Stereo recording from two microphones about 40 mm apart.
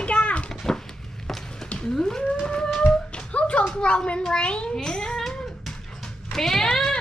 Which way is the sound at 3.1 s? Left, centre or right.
Left.